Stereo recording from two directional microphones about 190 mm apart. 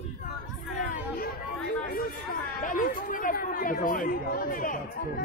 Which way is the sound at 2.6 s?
45° left (ahead or behind).